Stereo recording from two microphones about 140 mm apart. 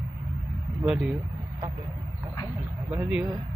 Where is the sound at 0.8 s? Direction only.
5° right (ahead or behind).